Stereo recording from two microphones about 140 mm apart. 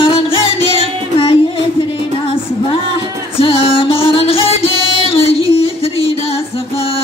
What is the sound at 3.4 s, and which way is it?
Music, 40° left (ahead or behind).